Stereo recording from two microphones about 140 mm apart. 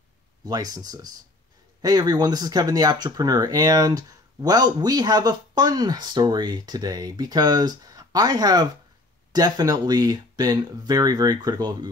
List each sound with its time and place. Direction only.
0.5 s speech: 25° right (ahead or behind)